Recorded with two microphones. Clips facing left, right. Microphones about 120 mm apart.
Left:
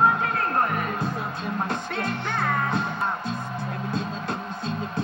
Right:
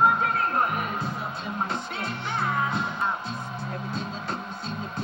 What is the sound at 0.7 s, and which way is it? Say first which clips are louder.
Music: left 2 dB; 50° left (ahead or behind).